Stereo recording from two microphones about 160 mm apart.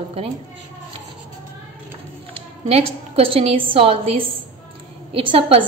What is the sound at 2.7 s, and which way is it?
A woman's voice, 35° right (ahead or behind).